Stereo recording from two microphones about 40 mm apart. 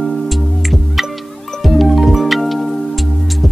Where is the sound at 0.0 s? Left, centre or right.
Centre.